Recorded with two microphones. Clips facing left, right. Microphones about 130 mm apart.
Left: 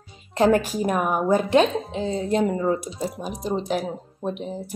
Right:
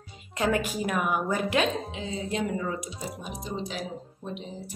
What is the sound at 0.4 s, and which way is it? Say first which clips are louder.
Speech: left 8 dB; 35° left (ahead or behind).